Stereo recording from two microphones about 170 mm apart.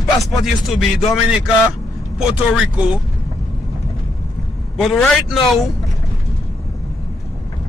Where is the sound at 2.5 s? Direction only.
5° right (ahead or behind).